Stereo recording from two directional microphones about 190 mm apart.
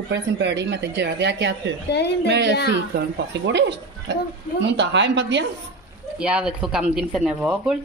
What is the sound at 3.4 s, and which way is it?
Speech, 65° right (ahead or behind).